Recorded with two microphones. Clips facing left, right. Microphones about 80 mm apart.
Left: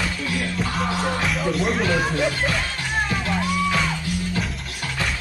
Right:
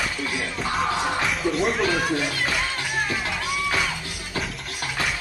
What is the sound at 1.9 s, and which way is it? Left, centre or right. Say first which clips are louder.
Speech: left 3 dB; left.